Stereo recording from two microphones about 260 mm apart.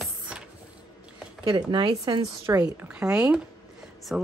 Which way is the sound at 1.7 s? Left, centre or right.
Centre.